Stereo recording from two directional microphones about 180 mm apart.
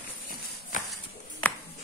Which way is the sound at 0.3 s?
50° left (ahead or behind).